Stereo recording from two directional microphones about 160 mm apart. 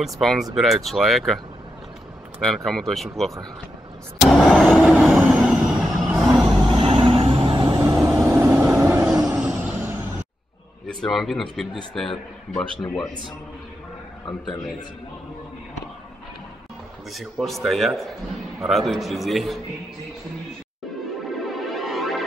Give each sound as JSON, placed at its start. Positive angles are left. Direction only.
{"t": 0.0, "sound": "speech", "side_deg": 0}
{"t": 2.4, "sound": "speech", "side_deg": 0}
{"t": 4.2, "sound": "vehicle", "side_deg": 0}
{"t": 6.7, "sound": "vehicle", "side_deg": -35}
{"t": 7.8, "sound": "vehicle", "side_deg": -15}
{"t": 8.1, "sound": "vehicle", "side_deg": -5}
{"t": 10.9, "sound": "speech", "side_deg": 5}
{"t": 17.1, "sound": "speech", "side_deg": 0}
{"t": 21.5, "sound": "music", "side_deg": 0}